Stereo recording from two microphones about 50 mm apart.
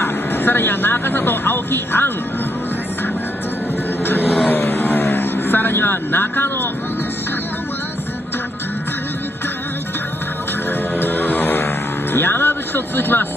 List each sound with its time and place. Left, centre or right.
0.4 s speech: left
4.0 s vehicle: left
4.6 s a sound: left
5.0 s vehicle: left
11.0 s vehicle: left